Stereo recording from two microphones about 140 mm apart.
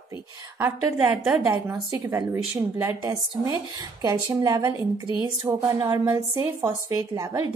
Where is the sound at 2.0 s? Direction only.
25° right (ahead or behind).